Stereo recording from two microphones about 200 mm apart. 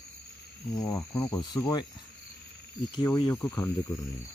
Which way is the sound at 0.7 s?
15° left (ahead or behind).